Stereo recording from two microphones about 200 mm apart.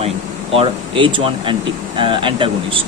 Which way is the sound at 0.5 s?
25° right (ahead or behind).